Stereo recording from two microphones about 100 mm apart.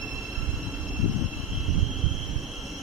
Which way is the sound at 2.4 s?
Centre (ahead or behind).